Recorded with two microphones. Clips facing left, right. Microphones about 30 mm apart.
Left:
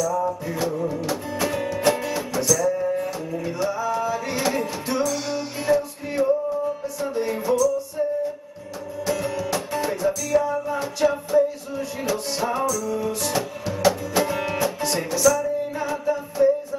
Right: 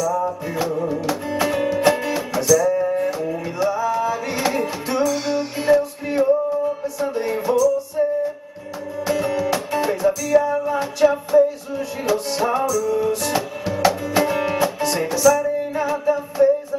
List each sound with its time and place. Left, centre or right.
0.0 s music: centre
6.0 s male singing: centre
6.8 s music: centre
11.0 s music: centre
14.8 s music: centre